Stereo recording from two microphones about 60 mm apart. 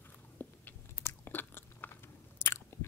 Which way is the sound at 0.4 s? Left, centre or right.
Left.